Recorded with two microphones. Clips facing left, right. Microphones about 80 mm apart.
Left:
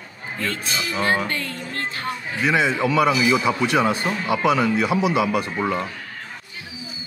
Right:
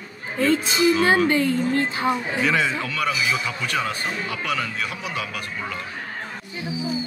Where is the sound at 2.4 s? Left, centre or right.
Centre.